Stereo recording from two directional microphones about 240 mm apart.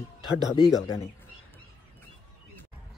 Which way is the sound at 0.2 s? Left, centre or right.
Centre.